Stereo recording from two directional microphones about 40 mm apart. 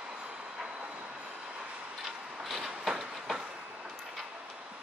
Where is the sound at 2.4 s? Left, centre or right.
Centre.